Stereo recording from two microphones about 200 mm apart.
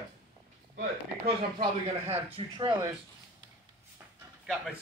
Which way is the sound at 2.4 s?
25° right (ahead or behind).